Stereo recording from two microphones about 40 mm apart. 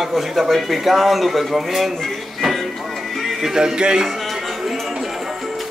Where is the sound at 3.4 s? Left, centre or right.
Centre.